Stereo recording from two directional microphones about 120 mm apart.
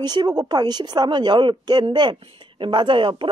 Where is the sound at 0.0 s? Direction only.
35° right (ahead or behind).